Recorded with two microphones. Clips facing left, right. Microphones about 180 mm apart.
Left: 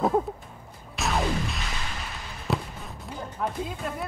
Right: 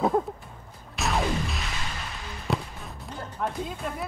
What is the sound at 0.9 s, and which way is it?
Music, centre (ahead or behind).